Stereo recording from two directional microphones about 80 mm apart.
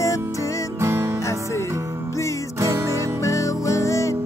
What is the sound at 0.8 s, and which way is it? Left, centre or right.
Music, right.